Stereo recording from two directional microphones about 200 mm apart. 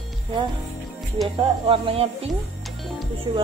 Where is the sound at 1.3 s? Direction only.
25° right (ahead or behind).